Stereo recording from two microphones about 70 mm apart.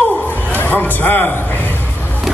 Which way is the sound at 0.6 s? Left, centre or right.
Left.